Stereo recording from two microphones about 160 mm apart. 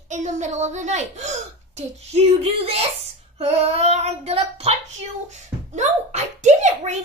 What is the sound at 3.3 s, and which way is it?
Child singing, 40° right (ahead or behind).